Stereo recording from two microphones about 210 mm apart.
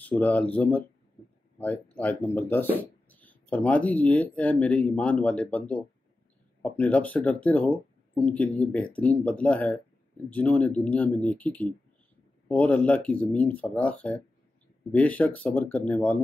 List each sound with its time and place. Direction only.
0.0 s speech: 5° left (ahead or behind)